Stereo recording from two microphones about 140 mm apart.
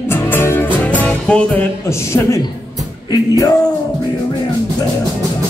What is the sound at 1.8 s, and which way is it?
Speech, 20° left (ahead or behind).